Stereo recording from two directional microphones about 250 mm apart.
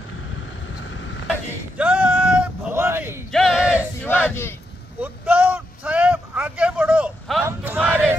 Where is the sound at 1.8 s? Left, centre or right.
Centre.